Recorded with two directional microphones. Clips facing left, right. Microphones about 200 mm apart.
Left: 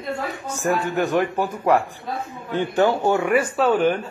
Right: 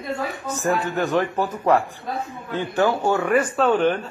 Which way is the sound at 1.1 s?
15° left (ahead or behind).